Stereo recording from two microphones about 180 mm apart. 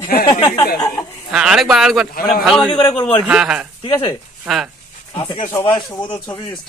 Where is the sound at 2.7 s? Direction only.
25° left (ahead or behind).